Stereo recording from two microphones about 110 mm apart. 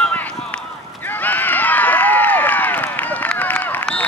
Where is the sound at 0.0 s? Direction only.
15° left (ahead or behind).